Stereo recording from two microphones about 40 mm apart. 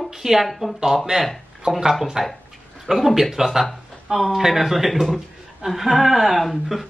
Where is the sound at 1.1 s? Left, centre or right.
Centre.